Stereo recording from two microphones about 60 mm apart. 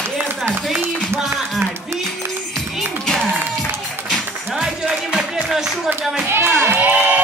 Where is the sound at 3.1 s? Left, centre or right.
Centre.